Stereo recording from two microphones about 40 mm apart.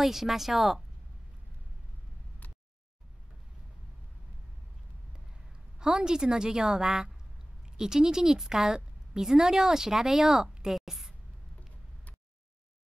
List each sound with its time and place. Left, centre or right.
0.0 s speech: centre
2.4 s a sound: left
5.8 s a woman's voice: centre